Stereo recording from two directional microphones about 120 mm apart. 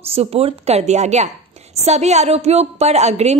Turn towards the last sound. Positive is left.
turn(degrees=-65)  # may be behind; listen again after turning